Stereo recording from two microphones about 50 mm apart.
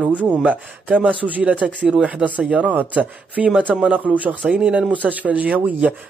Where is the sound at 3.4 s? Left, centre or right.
Centre.